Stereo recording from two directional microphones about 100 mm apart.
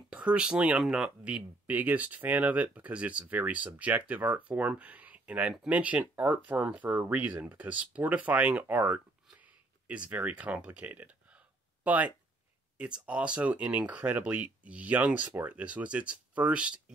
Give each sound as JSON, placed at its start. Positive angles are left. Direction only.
{"t": 0.1, "sound": "speech", "side_deg": -10}
{"t": 9.4, "sound": "a sound", "side_deg": -15}
{"t": 12.7, "sound": "speech", "side_deg": -10}